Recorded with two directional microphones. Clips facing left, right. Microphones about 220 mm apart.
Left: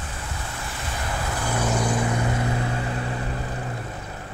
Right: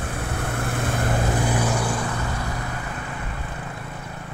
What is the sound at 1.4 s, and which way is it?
Vehicle, 15° right (ahead or behind).